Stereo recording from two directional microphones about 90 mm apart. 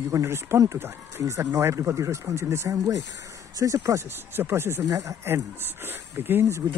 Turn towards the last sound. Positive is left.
turn(degrees=-25)  # may be behind; listen again after turning